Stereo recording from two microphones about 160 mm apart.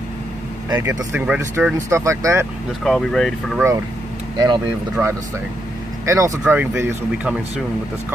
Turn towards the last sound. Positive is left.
turn(degrees=-10)  # may be behind; listen again after turning